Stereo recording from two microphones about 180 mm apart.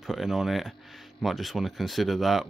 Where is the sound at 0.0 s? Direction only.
Centre (ahead or behind).